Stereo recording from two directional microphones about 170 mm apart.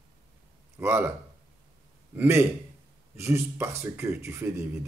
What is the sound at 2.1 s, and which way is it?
Speech, 15° right (ahead or behind).